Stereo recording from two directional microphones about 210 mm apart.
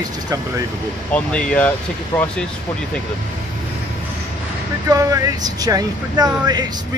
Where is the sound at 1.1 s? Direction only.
5° left (ahead or behind).